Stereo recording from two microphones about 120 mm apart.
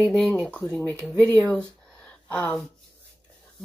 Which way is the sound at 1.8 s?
10° left (ahead or behind).